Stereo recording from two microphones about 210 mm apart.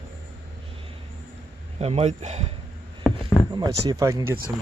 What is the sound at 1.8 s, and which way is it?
Speech, 30° right (ahead or behind).